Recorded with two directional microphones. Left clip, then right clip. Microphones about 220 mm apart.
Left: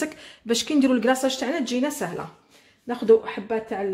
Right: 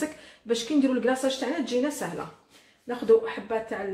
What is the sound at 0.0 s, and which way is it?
A woman's voice, 50° left (ahead or behind).